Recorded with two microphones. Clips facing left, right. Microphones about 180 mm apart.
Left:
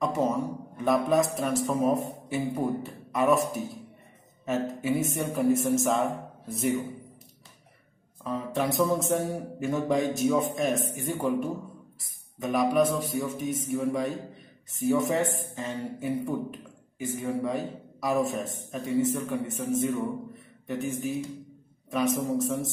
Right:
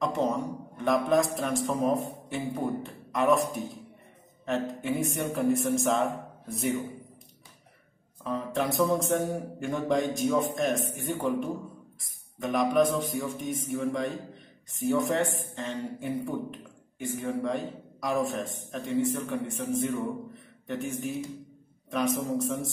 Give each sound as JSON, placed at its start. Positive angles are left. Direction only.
{"t": 0.0, "sound": "a man's voice", "side_deg": 5}
{"t": 8.2, "sound": "a man's voice", "side_deg": 0}